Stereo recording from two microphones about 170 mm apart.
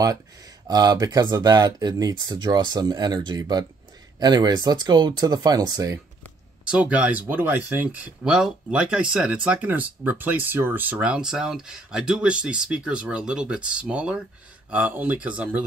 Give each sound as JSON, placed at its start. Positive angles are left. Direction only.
{"t": 0.7, "sound": "speech", "side_deg": -25}
{"t": 6.7, "sound": "speech", "side_deg": -5}